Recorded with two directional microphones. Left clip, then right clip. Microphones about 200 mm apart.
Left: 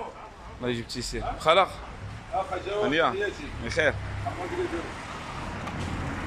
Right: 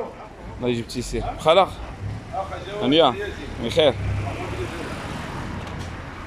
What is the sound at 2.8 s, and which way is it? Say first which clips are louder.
Speech: right 7 dB; 20° right (ahead or behind).